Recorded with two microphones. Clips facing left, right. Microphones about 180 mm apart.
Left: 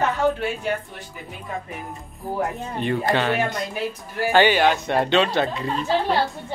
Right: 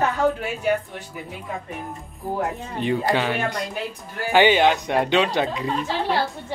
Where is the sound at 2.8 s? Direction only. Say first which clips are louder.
Even; 10° right (ahead or behind).